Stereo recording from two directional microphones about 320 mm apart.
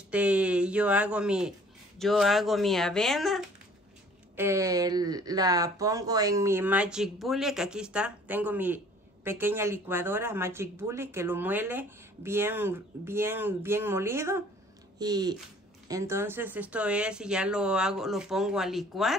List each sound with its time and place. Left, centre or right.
0.1 s speech: centre